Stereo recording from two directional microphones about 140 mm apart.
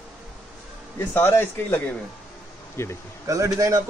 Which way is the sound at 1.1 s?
15° left (ahead or behind).